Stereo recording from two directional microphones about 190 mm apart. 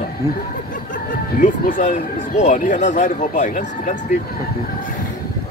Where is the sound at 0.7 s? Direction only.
45° left (ahead or behind).